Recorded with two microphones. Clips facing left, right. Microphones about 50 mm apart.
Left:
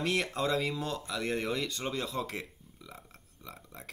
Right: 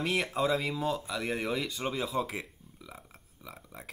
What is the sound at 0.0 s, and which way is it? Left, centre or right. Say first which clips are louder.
Speech: right 1 dB; centre.